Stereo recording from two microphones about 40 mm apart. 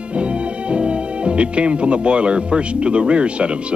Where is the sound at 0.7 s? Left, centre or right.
Right.